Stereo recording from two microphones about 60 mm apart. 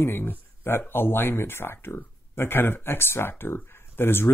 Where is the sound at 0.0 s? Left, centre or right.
Left.